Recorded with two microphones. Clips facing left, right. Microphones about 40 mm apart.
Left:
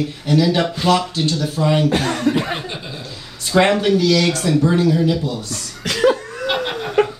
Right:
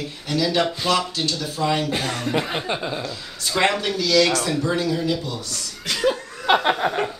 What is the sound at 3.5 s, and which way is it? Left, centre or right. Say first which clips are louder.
Speech: left 7 dB; left.